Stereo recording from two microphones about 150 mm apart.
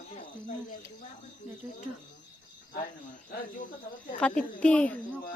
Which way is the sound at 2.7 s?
75° left (ahead or behind).